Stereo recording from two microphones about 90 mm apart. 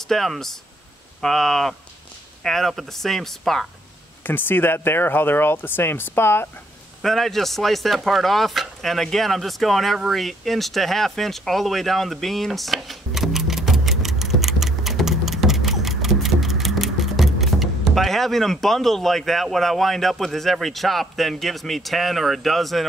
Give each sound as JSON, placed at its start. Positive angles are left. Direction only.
{"t": 0.0, "sound": "speech", "side_deg": 5}
{"t": 4.2, "sound": "speech", "side_deg": 20}
{"t": 7.0, "sound": "speech", "side_deg": 5}